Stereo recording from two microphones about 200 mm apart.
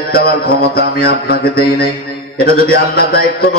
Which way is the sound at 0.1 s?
50° left (ahead or behind).